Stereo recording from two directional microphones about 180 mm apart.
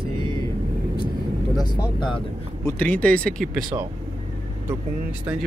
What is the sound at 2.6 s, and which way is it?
Speech, 10° left (ahead or behind).